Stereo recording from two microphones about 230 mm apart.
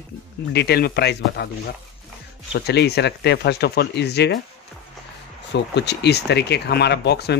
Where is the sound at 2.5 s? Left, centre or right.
Left.